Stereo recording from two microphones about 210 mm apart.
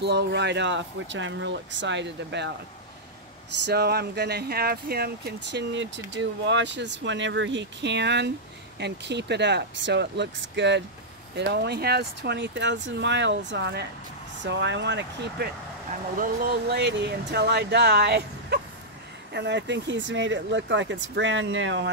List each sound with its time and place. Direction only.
0.0 s speech: 55° right (ahead or behind)
3.6 s speech: 50° right (ahead or behind)